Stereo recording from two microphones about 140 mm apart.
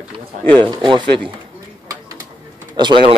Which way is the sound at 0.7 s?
35° right (ahead or behind).